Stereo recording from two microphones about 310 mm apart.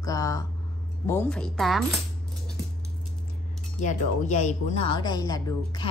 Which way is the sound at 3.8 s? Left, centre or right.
Left.